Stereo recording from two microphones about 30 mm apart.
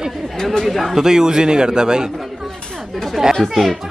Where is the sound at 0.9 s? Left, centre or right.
Centre.